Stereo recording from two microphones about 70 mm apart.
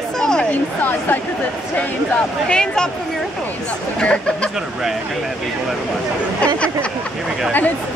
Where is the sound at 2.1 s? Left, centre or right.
Centre.